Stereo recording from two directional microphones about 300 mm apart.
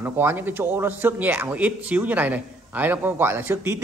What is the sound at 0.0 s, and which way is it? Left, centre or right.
A man's voice, centre.